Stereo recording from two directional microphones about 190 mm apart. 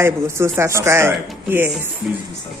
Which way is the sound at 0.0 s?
15° right (ahead or behind).